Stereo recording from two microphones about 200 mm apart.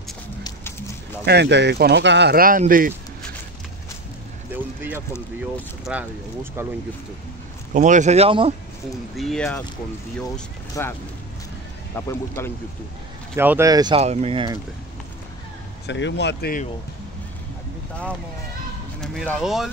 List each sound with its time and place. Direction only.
1.2 s speech: 55° right (ahead or behind)
4.5 s speech: 10° right (ahead or behind)
7.7 s a man's voice: 40° right (ahead or behind)
9.1 s speech: centre (ahead or behind)
10.7 s speech: 10° left (ahead or behind)
13.4 s speech: 10° right (ahead or behind)
13.9 s speech: 30° right (ahead or behind)
15.9 s speech: 60° left (ahead or behind)
18.9 s speech: centre (ahead or behind)